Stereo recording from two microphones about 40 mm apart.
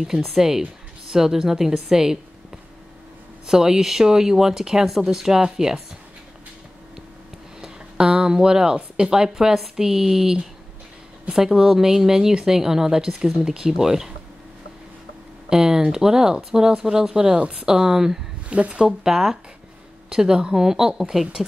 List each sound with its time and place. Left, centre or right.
0.0 s a woman's voice: centre
7.6 s a sound: centre
9.0 s a woman's voice: centre
15.5 s a woman's voice: centre
17.4 s speech: right
17.6 s a woman's voice: centre
18.5 s speech: right
18.9 s a woman's voice: centre